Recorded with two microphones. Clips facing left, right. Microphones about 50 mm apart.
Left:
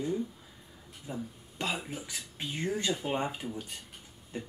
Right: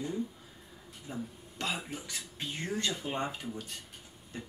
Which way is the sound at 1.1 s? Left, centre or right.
Centre.